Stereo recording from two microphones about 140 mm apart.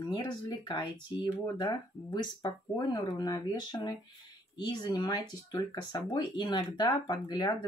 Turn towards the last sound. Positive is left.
turn(degrees=30)  # may be behind; listen again after turning